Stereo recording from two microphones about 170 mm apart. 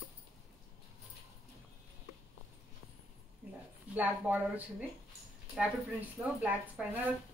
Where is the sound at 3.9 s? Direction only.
10° right (ahead or behind).